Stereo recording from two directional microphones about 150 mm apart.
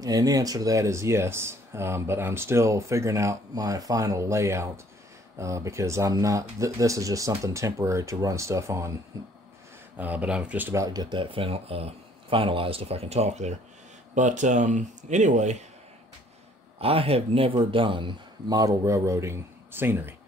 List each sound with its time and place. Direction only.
0.0 s speech: 25° right (ahead or behind)
9.9 s speech: 10° right (ahead or behind); by 15.5 s 55° right (ahead or behind)
16.8 s speech: 40° right (ahead or behind); by 20.2 s 15° right (ahead or behind)